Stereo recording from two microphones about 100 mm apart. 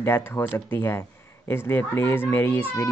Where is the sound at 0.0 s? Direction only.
25° left (ahead or behind).